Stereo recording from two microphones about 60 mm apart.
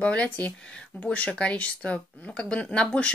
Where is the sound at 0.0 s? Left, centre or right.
Left.